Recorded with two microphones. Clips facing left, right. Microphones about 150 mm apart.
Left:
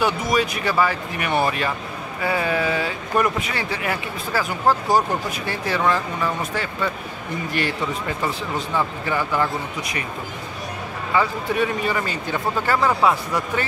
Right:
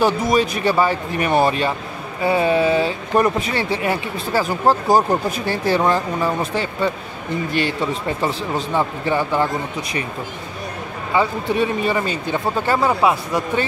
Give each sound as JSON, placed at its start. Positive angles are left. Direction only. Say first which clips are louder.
{"t": 0.0, "sound": "speech", "louder": "right 4 dB", "side_deg": -35}
{"t": 8.2, "sound": "speech", "louder": "right 3 dB", "side_deg": -25}
{"t": 11.1, "sound": "speech", "louder": "right 2 dB", "side_deg": -25}